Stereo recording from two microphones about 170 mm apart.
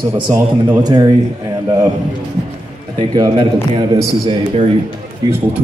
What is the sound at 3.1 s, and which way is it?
Speech, 30° right (ahead or behind).